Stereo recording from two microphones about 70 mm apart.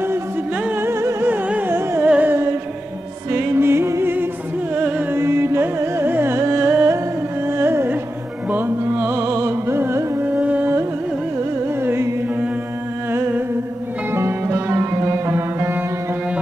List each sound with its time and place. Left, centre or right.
0.7 s music: right
1.3 s carnatic music: right
2.0 s music: right
3.3 s music: right
4.7 s music: centre
5.1 s music: right
6.6 s a sound: right
7.4 s music: right
10.2 s carnatic music: right
11.8 s music: right
14.5 s music: right